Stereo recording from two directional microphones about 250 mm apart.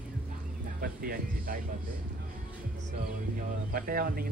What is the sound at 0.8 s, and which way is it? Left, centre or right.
Speech, right.